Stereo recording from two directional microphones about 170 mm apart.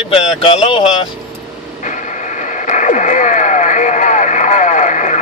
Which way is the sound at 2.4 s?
45° left (ahead or behind).